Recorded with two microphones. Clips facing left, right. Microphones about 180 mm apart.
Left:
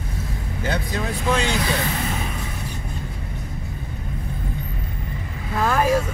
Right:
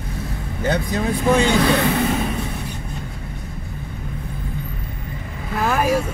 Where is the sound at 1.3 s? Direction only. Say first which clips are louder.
Right 6 dB; 60° right (ahead or behind).